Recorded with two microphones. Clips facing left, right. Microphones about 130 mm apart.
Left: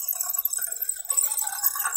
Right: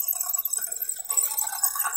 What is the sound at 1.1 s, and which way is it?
Jingle bell, 35° right (ahead or behind).